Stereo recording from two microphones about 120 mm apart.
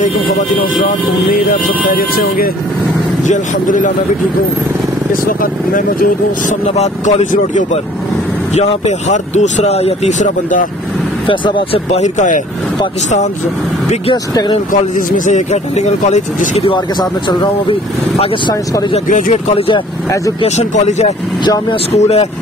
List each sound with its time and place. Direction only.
3.3 s speech: 90° left
6.8 s speech: 70° left (ahead or behind); by 10.7 s 90° left
11.2 s speech: 45° left (ahead or behind)
11.9 s speech: 80° left
14.7 s speech: 90° left
17.0 s speech: 40° left (ahead or behind)
19.0 s speech: 90° left
20.4 s speech: 70° left (ahead or behind)